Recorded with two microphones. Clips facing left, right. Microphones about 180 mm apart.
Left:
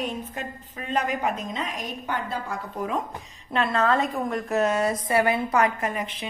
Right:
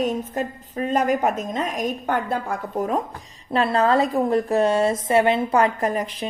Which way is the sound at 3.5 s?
35° right (ahead or behind).